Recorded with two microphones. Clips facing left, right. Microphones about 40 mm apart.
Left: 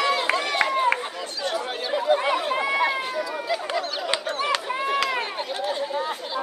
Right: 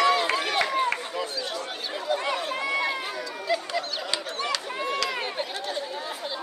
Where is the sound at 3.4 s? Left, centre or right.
Centre.